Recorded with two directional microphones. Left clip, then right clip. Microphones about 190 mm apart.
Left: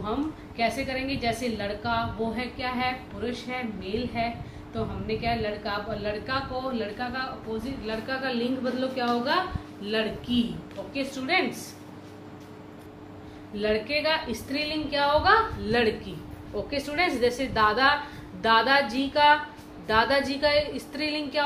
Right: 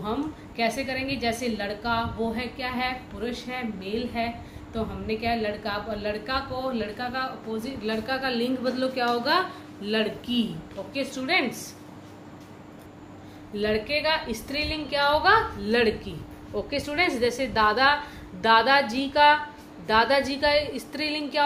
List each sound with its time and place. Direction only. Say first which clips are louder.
0.6 s a woman's voice: right 1 dB; 50° right (ahead or behind)
13.6 s a woman's voice: right 1 dB; 50° right (ahead or behind)